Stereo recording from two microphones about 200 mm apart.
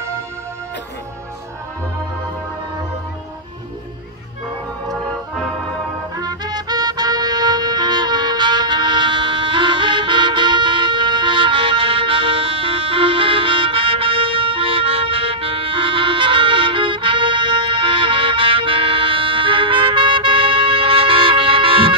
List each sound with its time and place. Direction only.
4.8 s music: centre (ahead or behind)
6.1 s music: 20° right (ahead or behind)